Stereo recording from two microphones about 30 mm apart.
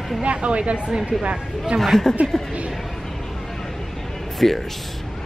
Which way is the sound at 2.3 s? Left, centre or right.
Left.